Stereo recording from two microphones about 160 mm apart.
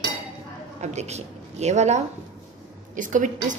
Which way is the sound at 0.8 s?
45° right (ahead or behind).